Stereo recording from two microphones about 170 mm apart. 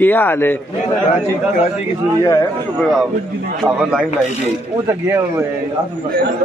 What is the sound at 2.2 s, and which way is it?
Speech, 15° left (ahead or behind).